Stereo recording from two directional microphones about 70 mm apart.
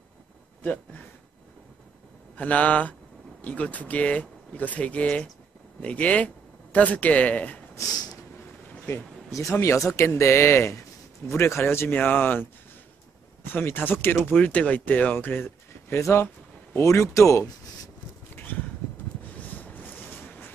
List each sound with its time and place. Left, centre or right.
2.3 s speech: left
9.3 s speech: left
13.5 s speech: left
14.4 s speech: centre
15.1 s a sound: left
16.0 s a man's voice: left
18.3 s a sound: left
19.5 s boat: left